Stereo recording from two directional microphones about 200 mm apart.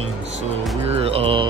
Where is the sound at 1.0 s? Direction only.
30° right (ahead or behind).